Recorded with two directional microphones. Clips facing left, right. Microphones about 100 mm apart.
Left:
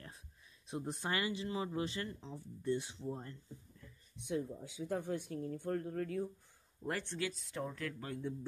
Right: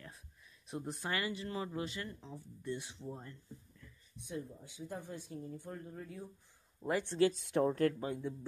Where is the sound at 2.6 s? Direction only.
30° left (ahead or behind).